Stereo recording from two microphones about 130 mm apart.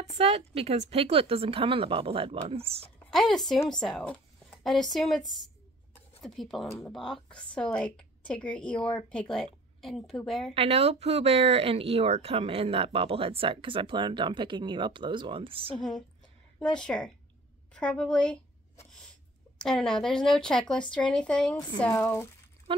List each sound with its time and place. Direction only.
0.2 s speech: 50° right (ahead or behind)
3.1 s a woman's voice: centre (ahead or behind)
10.5 s speech: 50° right (ahead or behind)
16.5 s a woman's voice: 5° left (ahead or behind)
19.6 s a woman's voice: 5° left (ahead or behind)
21.9 s speech: 20° left (ahead or behind)
22.7 s speech: 40° right (ahead or behind)